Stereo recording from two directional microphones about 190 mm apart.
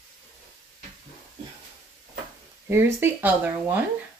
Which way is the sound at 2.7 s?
10° right (ahead or behind).